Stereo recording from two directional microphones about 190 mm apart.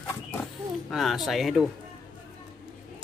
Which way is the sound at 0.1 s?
10° left (ahead or behind).